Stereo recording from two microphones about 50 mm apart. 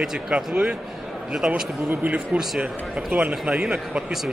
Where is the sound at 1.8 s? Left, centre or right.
Right.